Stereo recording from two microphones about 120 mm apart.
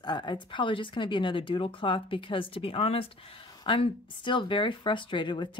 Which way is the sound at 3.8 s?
45° left (ahead or behind).